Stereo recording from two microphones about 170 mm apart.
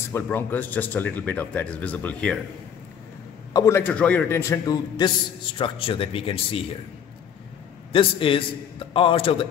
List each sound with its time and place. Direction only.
0.1 s speech: 10° left (ahead or behind)
3.5 s a man's voice: 15° left (ahead or behind); by 6.6 s 30° left (ahead or behind)
7.9 s a man's voice: 30° left (ahead or behind)